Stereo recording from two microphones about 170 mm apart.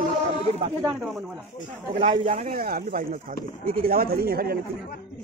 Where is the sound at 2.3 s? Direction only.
50° right (ahead or behind).